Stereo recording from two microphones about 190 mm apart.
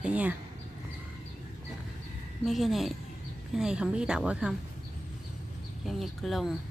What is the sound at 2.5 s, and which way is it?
A woman's voice, centre (ahead or behind).